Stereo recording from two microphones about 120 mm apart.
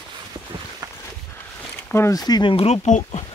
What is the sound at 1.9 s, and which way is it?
Speech, 25° left (ahead or behind).